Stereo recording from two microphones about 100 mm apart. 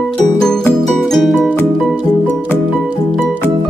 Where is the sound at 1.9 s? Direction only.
15° right (ahead or behind).